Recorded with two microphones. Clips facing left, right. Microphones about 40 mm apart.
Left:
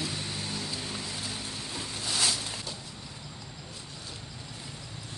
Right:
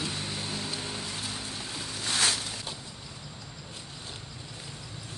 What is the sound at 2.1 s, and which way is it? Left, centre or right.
Boat, right.